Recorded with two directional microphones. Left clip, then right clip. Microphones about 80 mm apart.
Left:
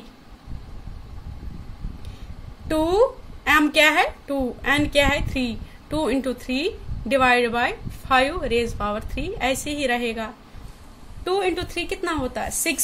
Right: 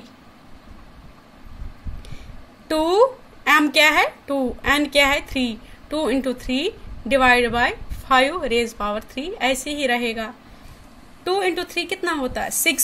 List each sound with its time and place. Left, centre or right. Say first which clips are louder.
2.7 s a woman's voice: right 2 dB; right